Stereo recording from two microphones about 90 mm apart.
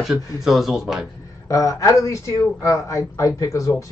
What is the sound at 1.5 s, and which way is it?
Speech, 40° left (ahead or behind).